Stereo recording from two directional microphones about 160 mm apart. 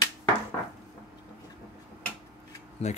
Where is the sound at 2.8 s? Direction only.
45° left (ahead or behind).